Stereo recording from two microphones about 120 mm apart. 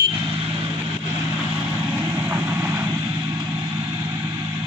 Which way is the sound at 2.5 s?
20° right (ahead or behind).